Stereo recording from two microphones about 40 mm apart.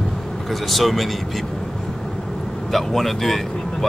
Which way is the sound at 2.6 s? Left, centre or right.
Centre.